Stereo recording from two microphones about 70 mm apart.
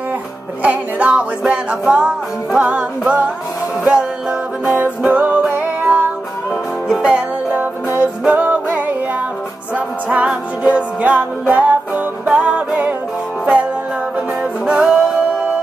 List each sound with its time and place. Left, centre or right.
0.6 s music: centre
3.8 s music: centre
14.7 s music: centre